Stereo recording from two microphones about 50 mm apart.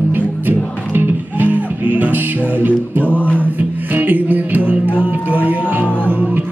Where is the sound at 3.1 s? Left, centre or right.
Left.